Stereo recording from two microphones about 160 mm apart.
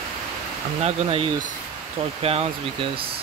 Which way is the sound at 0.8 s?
40° right (ahead or behind).